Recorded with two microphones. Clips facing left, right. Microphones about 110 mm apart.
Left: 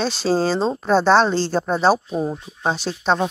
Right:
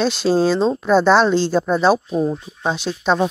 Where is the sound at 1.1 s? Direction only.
Centre (ahead or behind).